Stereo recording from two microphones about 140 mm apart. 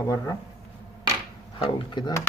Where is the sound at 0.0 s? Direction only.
25° left (ahead or behind).